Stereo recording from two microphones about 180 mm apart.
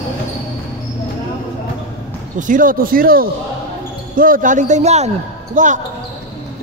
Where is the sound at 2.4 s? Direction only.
50° right (ahead or behind).